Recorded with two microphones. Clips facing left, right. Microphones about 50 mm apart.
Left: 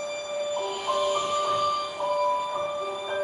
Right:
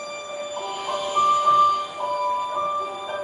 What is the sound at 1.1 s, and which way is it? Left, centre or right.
Music, right.